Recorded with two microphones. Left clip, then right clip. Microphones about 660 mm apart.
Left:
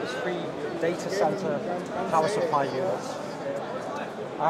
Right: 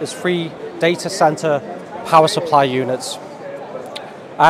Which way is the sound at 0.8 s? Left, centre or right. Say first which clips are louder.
Right 11 dB; right.